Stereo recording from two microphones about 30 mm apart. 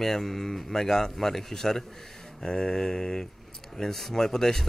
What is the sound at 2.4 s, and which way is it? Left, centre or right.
Mantra, left.